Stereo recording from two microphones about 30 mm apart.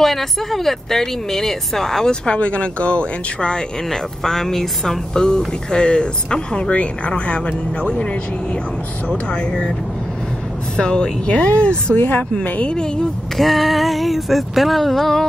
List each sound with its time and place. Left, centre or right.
0.0 s speech: centre
2.0 s speech: left
3.9 s speech: centre; by 8.2 s left
10.8 s a woman's voice: left
11.2 s a woman's voice: left
13.4 s a sound: centre